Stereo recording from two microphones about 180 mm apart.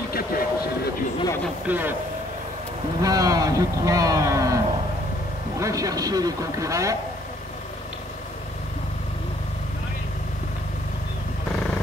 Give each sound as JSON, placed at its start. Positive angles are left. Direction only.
{"t": 0.1, "sound": "a sound", "side_deg": 55}
{"t": 1.7, "sound": "speech", "side_deg": -10}
{"t": 3.0, "sound": "speech", "side_deg": -20}
{"t": 5.6, "sound": "speech", "side_deg": -20}